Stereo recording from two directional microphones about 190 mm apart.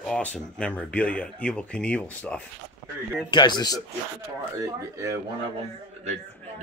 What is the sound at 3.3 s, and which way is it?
Speech, 25° left (ahead or behind).